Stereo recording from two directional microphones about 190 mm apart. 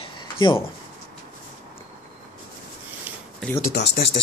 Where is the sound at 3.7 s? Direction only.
60° left (ahead or behind).